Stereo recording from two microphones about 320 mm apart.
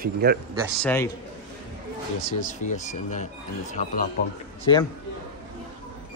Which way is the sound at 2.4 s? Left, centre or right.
Left.